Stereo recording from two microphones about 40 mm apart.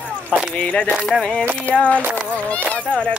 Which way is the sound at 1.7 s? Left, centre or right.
Left.